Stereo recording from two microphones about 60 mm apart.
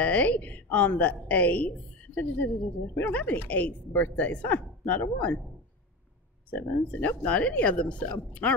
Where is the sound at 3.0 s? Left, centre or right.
Left.